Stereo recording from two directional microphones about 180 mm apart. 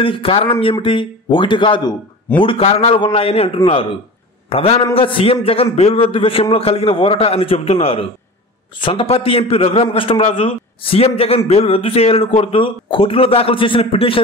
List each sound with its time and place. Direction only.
0.0 s a man's voice: 30° left (ahead or behind)